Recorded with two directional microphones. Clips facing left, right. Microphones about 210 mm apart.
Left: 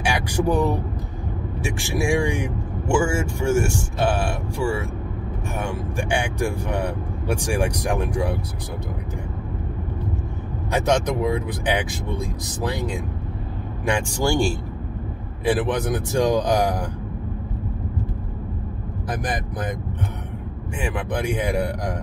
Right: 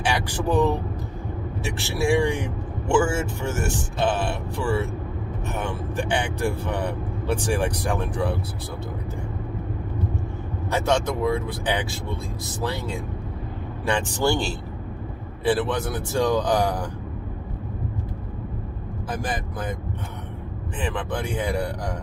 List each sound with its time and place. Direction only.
0.0 s speech: 15° left (ahead or behind)
10.7 s speech: 15° left (ahead or behind)
19.0 s speech: 15° left (ahead or behind)
20.8 s speech: 15° left (ahead or behind)